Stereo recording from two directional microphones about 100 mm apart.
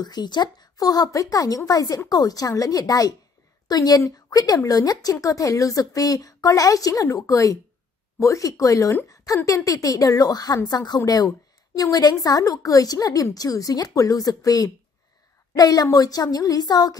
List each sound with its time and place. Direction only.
0.0 s speech: 45° left (ahead or behind)